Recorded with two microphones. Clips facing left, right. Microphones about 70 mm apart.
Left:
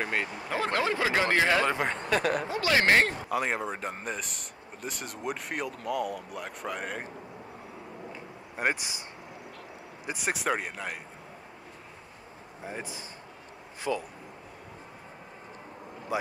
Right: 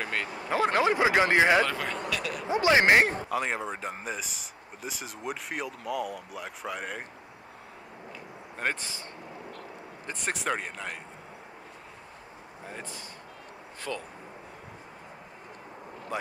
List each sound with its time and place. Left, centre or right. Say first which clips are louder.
0.0 s a sound: left 2 dB; centre
0.5 s speech: right 5 dB; centre
1.6 s speech: even; left
2.0 s speech: left 6 dB; left
2.4 s speech: right 3 dB; right
3.3 s speech: left 1 dB; centre
8.5 s speech: left 2 dB; centre
10.0 s speech: left 2 dB; centre
12.6 s speech: left 3 dB; centre
16.1 s speech: left 3 dB; centre